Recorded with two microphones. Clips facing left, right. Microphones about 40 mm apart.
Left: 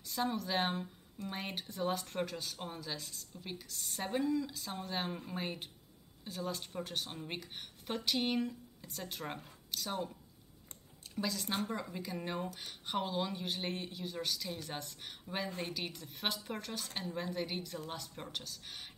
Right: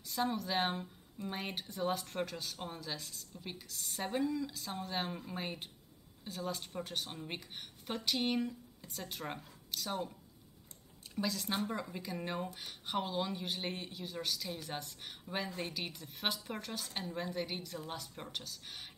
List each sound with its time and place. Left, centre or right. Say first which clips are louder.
0.0 s speech: even; centre
11.1 s speech: even; centre